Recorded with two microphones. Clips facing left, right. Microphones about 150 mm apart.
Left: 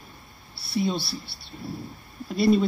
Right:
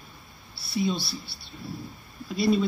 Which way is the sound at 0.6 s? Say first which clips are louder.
Left 1 dB; 60° left (ahead or behind).